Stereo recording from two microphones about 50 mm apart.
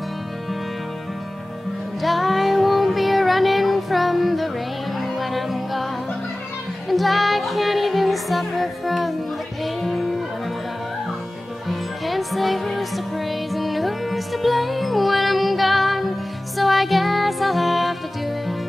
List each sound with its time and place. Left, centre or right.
2.0 s music: centre
6.9 s music: centre
11.7 s music: centre